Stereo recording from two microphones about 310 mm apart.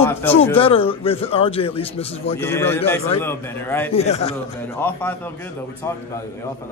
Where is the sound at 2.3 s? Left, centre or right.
Centre.